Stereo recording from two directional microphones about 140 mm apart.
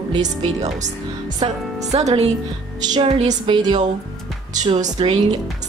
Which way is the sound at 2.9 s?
35° right (ahead or behind).